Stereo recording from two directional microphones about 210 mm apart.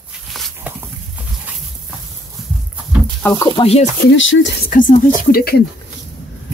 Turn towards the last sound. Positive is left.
turn(degrees=45)  # may be behind; listen again after turning